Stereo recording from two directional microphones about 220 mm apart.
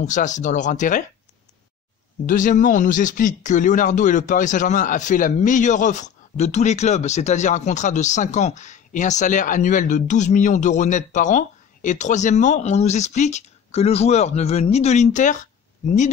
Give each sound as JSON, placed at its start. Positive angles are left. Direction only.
{"t": 0.0, "sound": "speech", "side_deg": 35}
{"t": 2.2, "sound": "speech", "side_deg": 35}